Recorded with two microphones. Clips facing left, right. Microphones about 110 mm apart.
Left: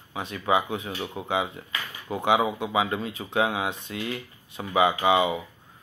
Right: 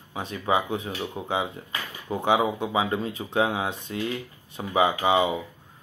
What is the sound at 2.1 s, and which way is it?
Speech, 10° left (ahead or behind).